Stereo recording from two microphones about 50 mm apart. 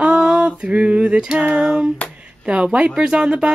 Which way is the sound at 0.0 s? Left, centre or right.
Centre.